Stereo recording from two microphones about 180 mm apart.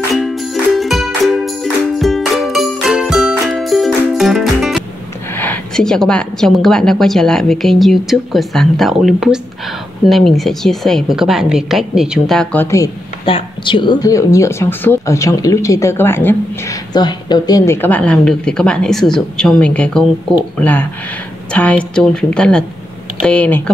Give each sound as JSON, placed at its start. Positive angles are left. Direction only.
{"t": 0.1, "sound": "music", "side_deg": 0}
{"t": 5.3, "sound": "speech", "side_deg": 10}
{"t": 12.7, "sound": "a woman's voice", "side_deg": 25}
{"t": 16.9, "sound": "a woman's voice", "side_deg": 25}